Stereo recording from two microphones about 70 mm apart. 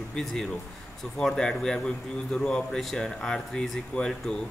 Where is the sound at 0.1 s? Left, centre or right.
Centre.